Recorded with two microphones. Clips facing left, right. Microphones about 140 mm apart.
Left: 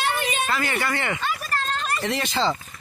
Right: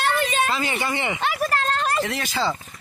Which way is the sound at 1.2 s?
70° right (ahead or behind).